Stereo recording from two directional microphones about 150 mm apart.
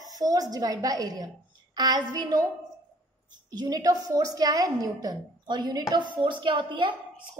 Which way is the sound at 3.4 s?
25° right (ahead or behind).